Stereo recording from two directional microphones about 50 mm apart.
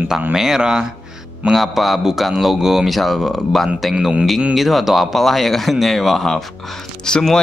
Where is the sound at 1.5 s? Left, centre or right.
Centre.